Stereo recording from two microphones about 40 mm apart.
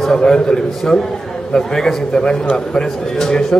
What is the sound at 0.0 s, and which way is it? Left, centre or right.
A man's voice, centre.